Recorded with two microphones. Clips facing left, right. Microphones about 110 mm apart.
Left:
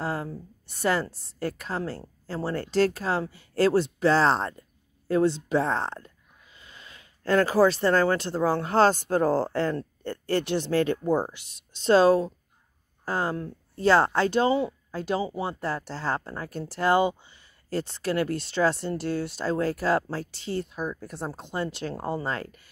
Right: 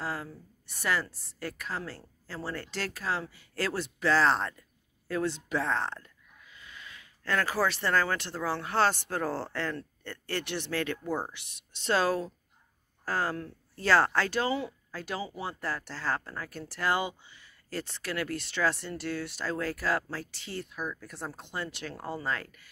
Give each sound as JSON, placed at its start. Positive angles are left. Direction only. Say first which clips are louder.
{"t": 0.0, "sound": "a woman's voice", "louder": "left 6 dB", "side_deg": 30}
{"t": 11.1, "sound": "speech", "louder": "left 8 dB", "side_deg": 15}
{"t": 11.3, "sound": "speech", "louder": "left 1 dB", "side_deg": 35}